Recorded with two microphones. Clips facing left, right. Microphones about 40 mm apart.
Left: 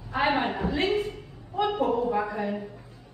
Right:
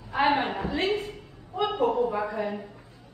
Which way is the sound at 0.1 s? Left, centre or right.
Centre.